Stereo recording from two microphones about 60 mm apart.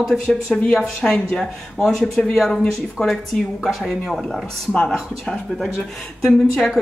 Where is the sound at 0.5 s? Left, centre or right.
Left.